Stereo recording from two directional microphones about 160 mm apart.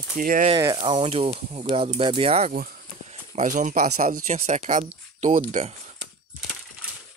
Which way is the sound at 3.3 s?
50° right (ahead or behind).